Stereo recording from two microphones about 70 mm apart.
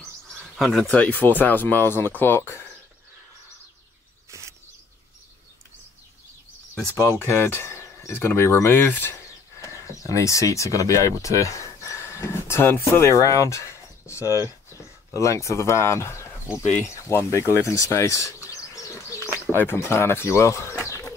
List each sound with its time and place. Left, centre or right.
0.0 s bird: centre
0.8 s speech: left
7.0 s speech: left
9.6 s speech: left
13.1 s speech: left
19.5 s speech: left
20.8 s pigeon: left